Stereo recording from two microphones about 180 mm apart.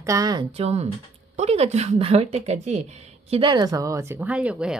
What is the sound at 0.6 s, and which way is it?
A woman's voice, 35° right (ahead or behind).